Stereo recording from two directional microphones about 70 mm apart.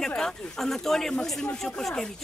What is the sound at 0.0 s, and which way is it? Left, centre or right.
Speech, centre.